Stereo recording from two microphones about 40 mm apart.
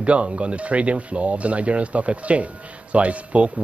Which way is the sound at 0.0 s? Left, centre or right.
Right.